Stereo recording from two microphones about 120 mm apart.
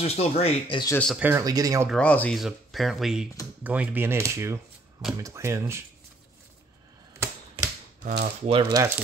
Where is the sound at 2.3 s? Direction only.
Centre (ahead or behind).